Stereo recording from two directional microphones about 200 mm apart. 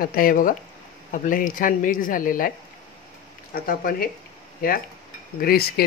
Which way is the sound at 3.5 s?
45° left (ahead or behind).